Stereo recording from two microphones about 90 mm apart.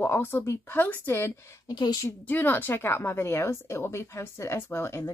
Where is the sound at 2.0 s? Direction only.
20° left (ahead or behind).